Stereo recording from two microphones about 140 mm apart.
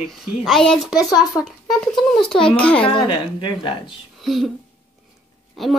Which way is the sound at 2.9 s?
35° left (ahead or behind).